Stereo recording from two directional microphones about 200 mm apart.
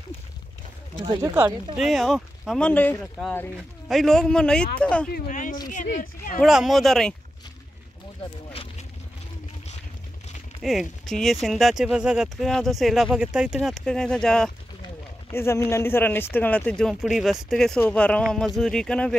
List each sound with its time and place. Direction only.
1.0 s speech: 20° right (ahead or behind)
1.8 s speech: centre (ahead or behind)
5.1 s speech: 40° left (ahead or behind)
6.4 s speech: centre (ahead or behind)
10.6 s speech: centre (ahead or behind)